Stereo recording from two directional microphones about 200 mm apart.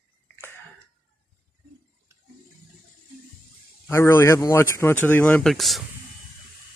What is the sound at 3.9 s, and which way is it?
Speech, 10° left (ahead or behind).